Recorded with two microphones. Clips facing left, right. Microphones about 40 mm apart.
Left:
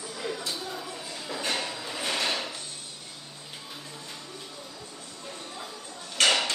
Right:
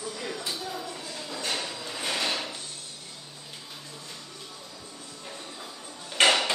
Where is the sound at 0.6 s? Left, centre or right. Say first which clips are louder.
Right 1 dB; centre.